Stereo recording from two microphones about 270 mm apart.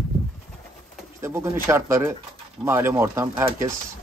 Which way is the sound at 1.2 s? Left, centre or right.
Centre.